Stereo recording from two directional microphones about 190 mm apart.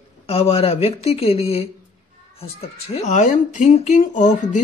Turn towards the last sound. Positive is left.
turn(degrees=40)  # may be behind; listen again after turning